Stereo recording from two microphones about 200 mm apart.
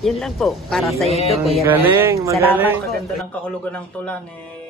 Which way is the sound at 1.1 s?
30° left (ahead or behind).